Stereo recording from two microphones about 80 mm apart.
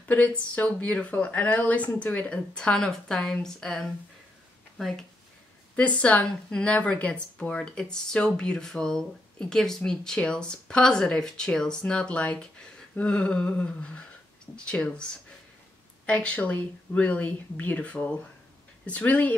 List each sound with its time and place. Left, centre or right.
0.1 s a woman's voice: centre
5.8 s a woman's voice: centre
16.1 s a woman's voice: centre